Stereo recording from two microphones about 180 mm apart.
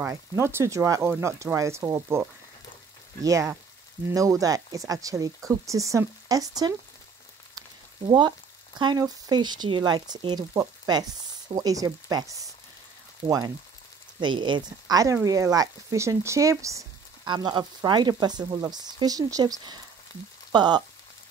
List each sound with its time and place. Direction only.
0.0 s speech: 15° right (ahead or behind)
8.1 s speech: 25° right (ahead or behind)